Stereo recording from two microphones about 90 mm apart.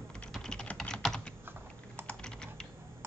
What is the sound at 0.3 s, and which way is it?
Typing, 5° left (ahead or behind).